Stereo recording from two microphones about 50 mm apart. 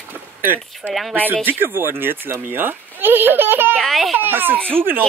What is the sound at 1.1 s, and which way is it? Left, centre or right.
Speech, right.